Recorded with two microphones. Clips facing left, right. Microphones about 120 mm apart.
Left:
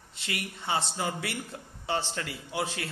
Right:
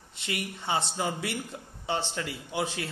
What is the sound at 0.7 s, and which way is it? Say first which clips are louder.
A man's voice: right 1 dB; 20° right (ahead or behind).